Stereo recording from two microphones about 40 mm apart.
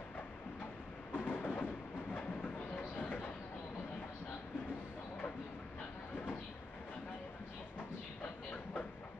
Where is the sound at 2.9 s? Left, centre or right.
Left.